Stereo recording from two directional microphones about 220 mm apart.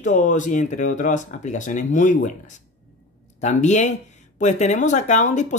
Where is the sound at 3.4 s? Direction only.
35° left (ahead or behind).